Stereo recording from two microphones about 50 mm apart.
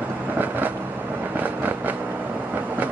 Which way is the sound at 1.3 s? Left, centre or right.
Right.